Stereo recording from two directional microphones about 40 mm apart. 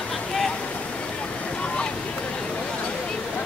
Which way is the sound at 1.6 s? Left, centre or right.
Left.